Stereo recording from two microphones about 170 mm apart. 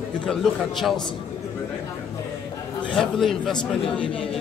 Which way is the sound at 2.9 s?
5° left (ahead or behind).